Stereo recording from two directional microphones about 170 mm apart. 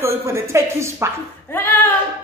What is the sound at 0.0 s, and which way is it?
Speech, 15° right (ahead or behind).